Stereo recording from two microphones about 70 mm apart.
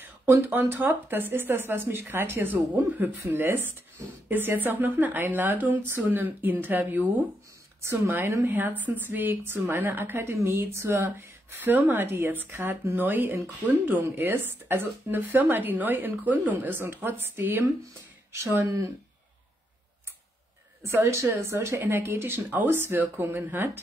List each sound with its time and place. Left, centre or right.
0.0 s speech: right
10.1 s a woman's voice: right
10.9 s speech: right
20.8 s speech: right